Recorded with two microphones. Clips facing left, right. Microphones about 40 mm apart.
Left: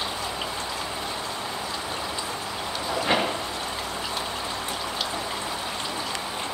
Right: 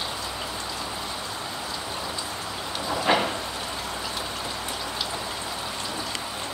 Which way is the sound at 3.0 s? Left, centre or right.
Centre.